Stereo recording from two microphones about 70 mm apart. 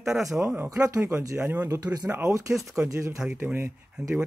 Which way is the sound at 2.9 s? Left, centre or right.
Right.